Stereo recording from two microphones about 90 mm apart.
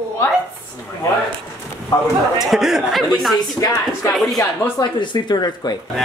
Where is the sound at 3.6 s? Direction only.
40° left (ahead or behind).